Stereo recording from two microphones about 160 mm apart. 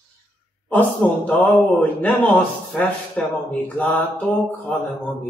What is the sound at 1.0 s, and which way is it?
Speech, centre (ahead or behind).